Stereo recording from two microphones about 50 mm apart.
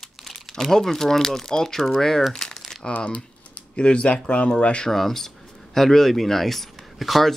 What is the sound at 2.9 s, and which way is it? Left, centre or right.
Speech, left.